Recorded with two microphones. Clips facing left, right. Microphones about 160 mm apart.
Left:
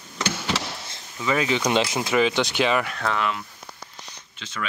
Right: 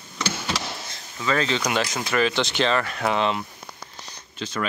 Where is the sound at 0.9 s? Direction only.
15° left (ahead or behind).